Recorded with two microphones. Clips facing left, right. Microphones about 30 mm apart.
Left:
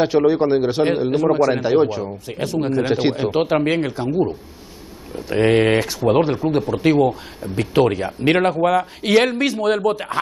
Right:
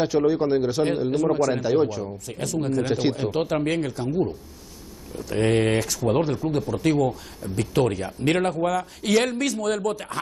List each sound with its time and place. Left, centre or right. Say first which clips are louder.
0.0 s speech: left 5 dB; left